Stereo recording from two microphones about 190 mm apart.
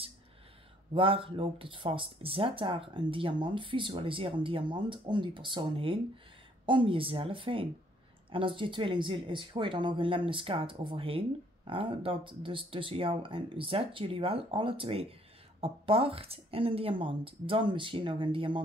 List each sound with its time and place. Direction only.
0.9 s speech: 30° right (ahead or behind)